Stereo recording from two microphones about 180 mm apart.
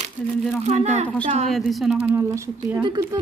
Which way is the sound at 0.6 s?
40° right (ahead or behind).